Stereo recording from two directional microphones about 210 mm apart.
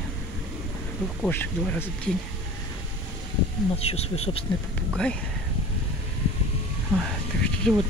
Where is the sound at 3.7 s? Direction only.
30° left (ahead or behind).